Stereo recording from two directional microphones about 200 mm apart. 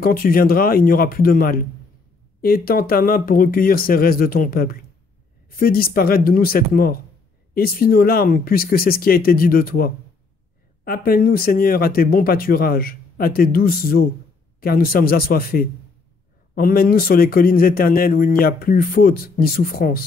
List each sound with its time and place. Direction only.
0.0 s speech: 45° left (ahead or behind)